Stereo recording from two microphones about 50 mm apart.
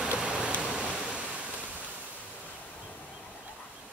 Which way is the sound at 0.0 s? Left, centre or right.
Centre.